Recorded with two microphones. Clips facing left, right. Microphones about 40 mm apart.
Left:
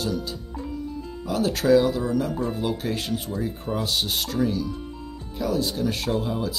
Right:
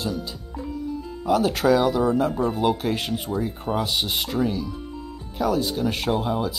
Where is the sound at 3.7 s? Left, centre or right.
Right.